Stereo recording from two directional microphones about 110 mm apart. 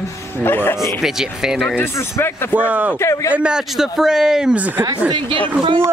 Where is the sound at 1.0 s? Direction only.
5° right (ahead or behind).